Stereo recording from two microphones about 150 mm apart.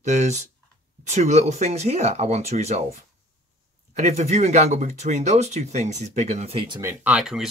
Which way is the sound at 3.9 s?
50° right (ahead or behind).